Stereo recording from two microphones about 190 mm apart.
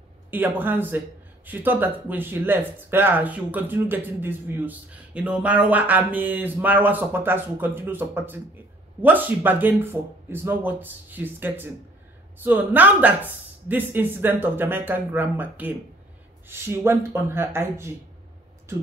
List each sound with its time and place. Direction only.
0.3 s a man's voice: 10° right (ahead or behind)